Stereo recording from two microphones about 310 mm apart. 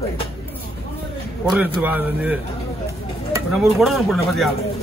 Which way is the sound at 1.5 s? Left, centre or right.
Centre.